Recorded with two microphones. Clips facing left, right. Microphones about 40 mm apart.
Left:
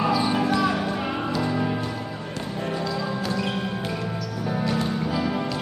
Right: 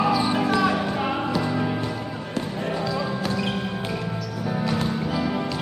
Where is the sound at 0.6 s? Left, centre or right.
Centre.